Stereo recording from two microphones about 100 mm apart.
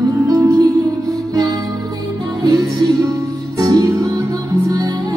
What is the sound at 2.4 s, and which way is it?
Music, 40° right (ahead or behind).